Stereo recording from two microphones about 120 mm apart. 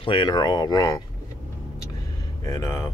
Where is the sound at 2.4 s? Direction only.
25° left (ahead or behind).